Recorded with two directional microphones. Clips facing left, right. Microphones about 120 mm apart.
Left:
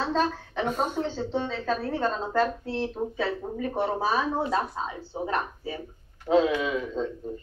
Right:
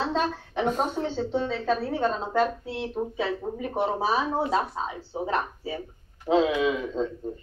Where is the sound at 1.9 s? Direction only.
20° right (ahead or behind).